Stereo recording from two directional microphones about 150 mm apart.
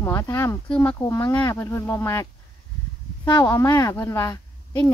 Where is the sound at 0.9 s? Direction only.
20° left (ahead or behind).